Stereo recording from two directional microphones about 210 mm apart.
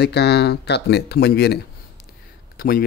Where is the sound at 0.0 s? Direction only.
50° left (ahead or behind).